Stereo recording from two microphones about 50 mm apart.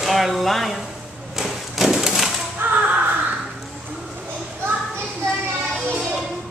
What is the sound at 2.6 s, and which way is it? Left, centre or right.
Crow, right.